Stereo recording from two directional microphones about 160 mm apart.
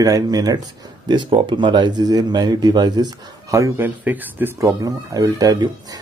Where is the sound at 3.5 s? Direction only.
15° right (ahead or behind).